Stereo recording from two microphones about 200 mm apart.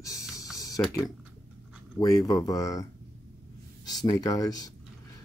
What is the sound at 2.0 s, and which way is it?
Speech, 15° left (ahead or behind).